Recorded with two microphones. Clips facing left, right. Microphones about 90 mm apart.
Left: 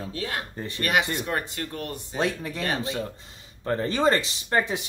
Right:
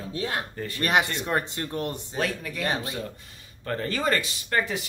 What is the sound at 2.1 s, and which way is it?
Speech, 25° left (ahead or behind).